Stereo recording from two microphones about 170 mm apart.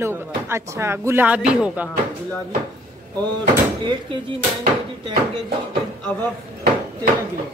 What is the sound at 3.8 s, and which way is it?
Speech, 25° right (ahead or behind).